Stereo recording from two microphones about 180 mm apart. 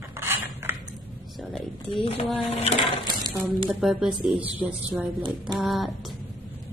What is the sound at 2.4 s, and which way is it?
Speech, 35° left (ahead or behind).